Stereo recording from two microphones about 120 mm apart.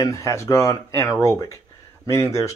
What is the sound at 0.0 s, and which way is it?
Speech, 25° left (ahead or behind).